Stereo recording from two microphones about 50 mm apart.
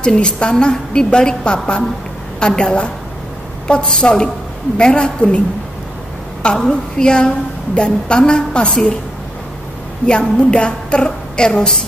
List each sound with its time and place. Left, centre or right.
0.0 s a woman's voice: centre
6.4 s a woman's voice: centre
10.0 s a woman's voice: centre